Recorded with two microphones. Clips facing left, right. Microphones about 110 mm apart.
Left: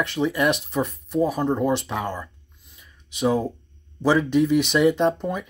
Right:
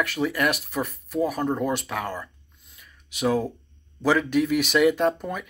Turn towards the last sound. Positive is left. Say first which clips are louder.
# left 2 dB
turn(degrees=20)  # may be behind; listen again after turning